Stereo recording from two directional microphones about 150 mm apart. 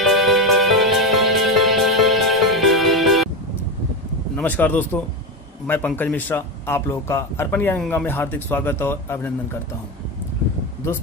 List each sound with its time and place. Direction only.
0.0 s music: centre (ahead or behind)
4.4 s a man's voice: 10° left (ahead or behind)
10.8 s a man's voice: 15° left (ahead or behind)